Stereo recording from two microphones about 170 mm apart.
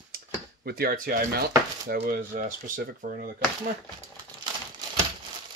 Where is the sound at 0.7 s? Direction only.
65° right (ahead or behind).